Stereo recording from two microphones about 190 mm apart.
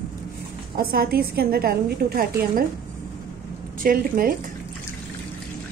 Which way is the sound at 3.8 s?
50° right (ahead or behind).